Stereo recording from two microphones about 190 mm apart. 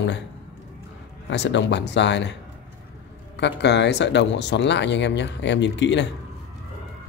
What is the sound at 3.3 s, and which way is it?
Speech, 65° left (ahead or behind).